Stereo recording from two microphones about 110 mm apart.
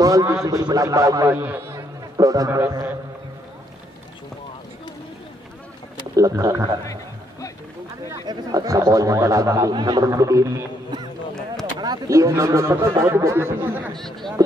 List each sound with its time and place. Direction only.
0.0 s speech: 35° right (ahead or behind)
1.3 s speech: 20° right (ahead or behind)
2.1 s speech: 35° right (ahead or behind)
6.1 s speech: 30° right (ahead or behind)
6.8 s music: 30° left (ahead or behind)
8.3 s speech: 35° right (ahead or behind)
10.9 s a sound: 40° right (ahead or behind)
11.8 s speech: 35° right (ahead or behind); by 13.9 s 20° right (ahead or behind)
13.9 s speech: 5° left (ahead or behind)